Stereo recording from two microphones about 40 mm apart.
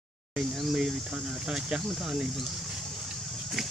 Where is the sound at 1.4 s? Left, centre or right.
Centre.